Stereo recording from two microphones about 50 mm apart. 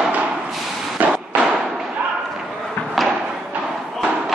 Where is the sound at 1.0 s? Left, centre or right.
Right.